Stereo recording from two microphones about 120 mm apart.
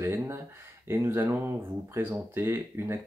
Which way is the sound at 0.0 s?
20° right (ahead or behind).